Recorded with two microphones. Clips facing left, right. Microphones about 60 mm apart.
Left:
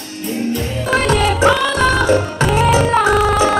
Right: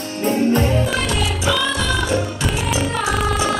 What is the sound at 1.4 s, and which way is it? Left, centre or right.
Music, left.